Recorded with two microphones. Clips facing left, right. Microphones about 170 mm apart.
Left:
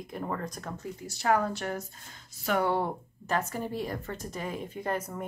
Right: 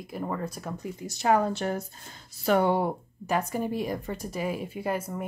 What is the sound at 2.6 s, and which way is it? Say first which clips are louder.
A woman's voice: right 3 dB; 10° right (ahead or behind).